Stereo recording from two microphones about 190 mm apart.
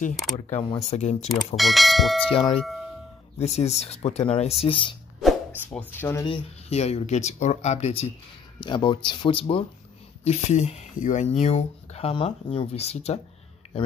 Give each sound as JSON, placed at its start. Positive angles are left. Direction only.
{"t": 0.1, "sound": "speech", "side_deg": 0}
{"t": 0.5, "sound": "speech", "side_deg": 35}
{"t": 1.6, "sound": "speech", "side_deg": 0}
{"t": 2.3, "sound": "speech", "side_deg": 30}
{"t": 2.6, "sound": "speech", "side_deg": 0}
{"t": 3.3, "sound": "speech", "side_deg": 35}
{"t": 5.2, "sound": "a sound", "side_deg": -10}
{"t": 5.7, "sound": "speech", "side_deg": 10}
{"t": 6.2, "sound": "speech", "side_deg": 30}